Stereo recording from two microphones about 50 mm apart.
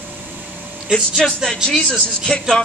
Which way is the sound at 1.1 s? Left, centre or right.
Centre.